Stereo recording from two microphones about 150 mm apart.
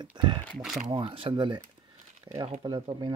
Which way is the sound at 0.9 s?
35° right (ahead or behind).